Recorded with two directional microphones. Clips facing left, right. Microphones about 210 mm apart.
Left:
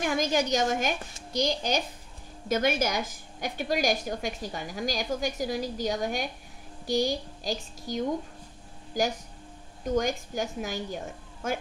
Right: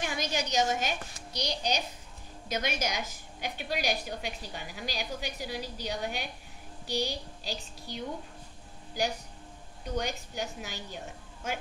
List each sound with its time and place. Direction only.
0.0 s a woman's voice: 50° left (ahead or behind)
9.8 s a woman's voice: 45° left (ahead or behind)